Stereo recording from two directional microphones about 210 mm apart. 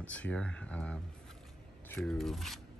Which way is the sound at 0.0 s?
5° left (ahead or behind).